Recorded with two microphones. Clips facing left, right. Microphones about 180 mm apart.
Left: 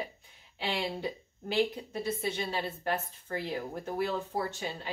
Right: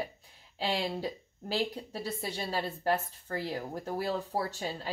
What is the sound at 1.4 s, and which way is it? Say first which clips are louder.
A woman's voice: left 3 dB; 40° right (ahead or behind).